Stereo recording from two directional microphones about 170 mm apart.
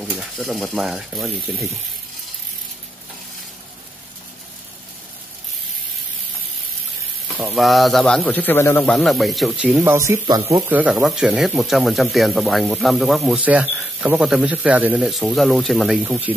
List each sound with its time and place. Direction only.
0.0 s speech: centre (ahead or behind)
7.3 s speech: centre (ahead or behind)
9.8 s speech: 15° right (ahead or behind)
10.7 s speech: 5° right (ahead or behind)